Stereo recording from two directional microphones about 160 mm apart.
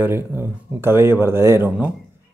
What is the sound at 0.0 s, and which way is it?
Speech, 15° right (ahead or behind).